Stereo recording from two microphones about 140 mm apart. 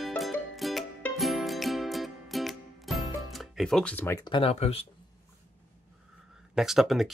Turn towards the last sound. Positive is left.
turn(degrees=0)  # may be behind; listen again after turning